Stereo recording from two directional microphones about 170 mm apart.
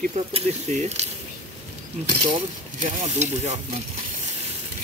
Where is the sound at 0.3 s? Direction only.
40° right (ahead or behind).